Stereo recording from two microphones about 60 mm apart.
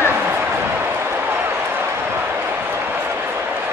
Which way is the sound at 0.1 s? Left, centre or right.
Right.